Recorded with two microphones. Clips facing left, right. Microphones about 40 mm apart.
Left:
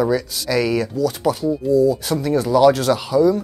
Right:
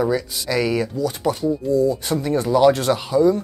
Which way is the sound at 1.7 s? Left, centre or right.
Right.